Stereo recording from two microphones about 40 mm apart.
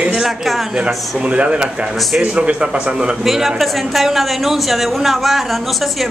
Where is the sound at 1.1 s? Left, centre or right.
Right.